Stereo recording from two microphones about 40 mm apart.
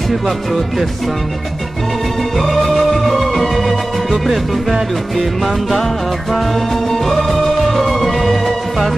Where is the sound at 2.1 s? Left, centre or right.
Centre.